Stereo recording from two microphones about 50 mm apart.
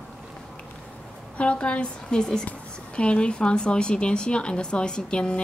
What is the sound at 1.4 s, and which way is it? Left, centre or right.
Speech, left.